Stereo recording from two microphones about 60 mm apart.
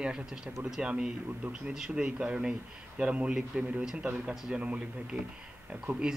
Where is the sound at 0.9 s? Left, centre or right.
Centre.